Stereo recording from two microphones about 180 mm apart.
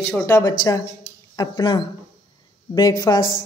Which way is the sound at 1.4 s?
20° left (ahead or behind).